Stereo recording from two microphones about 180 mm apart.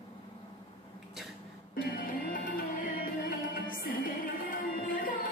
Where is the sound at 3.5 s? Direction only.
50° left (ahead or behind).